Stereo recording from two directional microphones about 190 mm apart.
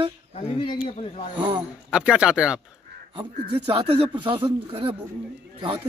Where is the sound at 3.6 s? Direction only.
30° right (ahead or behind).